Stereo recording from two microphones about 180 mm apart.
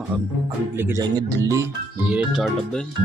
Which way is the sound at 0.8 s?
20° right (ahead or behind).